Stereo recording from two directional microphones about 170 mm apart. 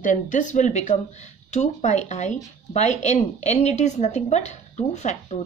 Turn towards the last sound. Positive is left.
turn(degrees=45)  # may be behind; listen again after turning